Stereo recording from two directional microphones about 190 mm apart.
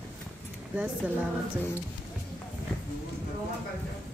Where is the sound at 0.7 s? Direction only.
5° right (ahead or behind).